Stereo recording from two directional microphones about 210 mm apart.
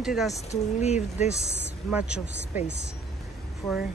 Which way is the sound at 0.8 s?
30° left (ahead or behind).